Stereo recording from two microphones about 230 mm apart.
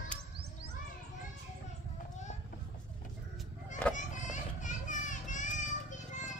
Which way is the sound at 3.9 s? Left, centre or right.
Left.